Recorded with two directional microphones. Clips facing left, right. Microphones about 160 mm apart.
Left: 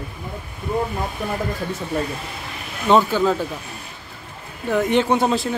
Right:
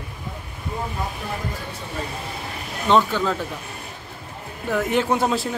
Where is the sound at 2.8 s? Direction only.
5° left (ahead or behind).